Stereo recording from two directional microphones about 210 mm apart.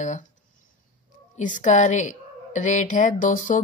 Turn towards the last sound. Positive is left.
turn(degrees=40)  # may be behind; listen again after turning